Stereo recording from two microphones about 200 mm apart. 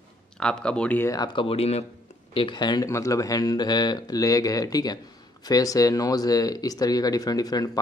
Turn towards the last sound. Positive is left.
turn(degrees=20)  # may be behind; listen again after turning